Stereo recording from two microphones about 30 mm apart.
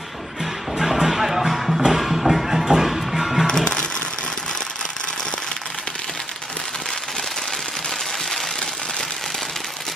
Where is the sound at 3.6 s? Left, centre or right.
Left.